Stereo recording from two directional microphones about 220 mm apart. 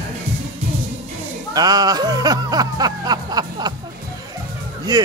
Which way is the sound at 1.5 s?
15° right (ahead or behind).